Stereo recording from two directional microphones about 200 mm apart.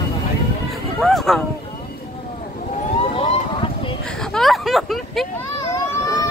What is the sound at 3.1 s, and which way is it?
Vehicle, 30° left (ahead or behind).